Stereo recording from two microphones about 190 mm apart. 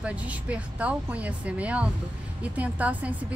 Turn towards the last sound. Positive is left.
turn(degrees=-5)  # may be behind; listen again after turning